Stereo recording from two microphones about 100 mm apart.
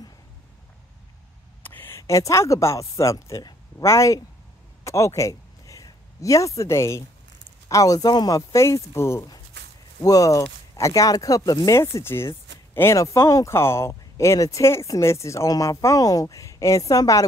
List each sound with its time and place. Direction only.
1.6 s speech: 20° left (ahead or behind); by 17.3 s 35° left (ahead or behind)